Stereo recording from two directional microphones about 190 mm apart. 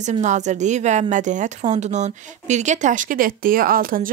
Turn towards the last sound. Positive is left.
turn(degrees=-50)  # may be behind; listen again after turning